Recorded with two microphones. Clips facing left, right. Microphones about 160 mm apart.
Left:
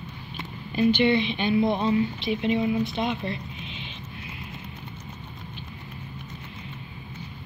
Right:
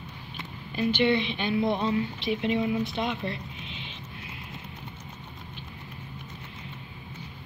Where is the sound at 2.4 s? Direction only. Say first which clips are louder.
Left 3 dB; 5° left (ahead or behind).